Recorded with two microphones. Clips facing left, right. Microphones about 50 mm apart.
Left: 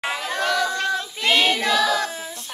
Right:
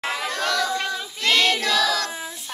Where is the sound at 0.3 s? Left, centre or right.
Centre.